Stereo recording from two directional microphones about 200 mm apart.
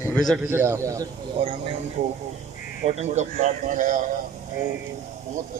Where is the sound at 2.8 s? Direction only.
35° right (ahead or behind).